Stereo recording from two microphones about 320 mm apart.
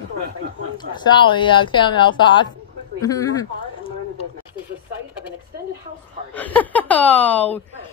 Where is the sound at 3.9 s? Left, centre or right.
Centre.